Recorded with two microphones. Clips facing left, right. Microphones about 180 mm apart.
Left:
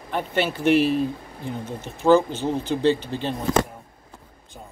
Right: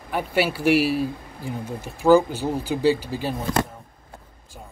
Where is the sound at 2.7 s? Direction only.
5° right (ahead or behind).